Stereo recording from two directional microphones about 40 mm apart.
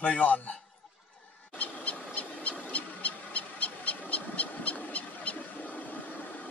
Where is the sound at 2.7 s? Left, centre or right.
Left.